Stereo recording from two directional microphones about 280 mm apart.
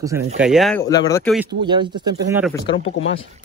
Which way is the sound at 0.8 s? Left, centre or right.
Centre.